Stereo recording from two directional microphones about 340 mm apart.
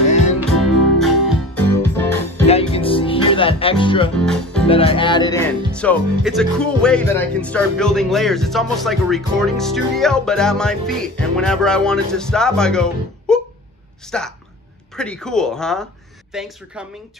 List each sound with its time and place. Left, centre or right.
0.4 s music: centre
2.4 s music: centre
4.2 s speech: centre
4.6 s speech: centre
13.3 s a sound: centre
14.0 s speech: centre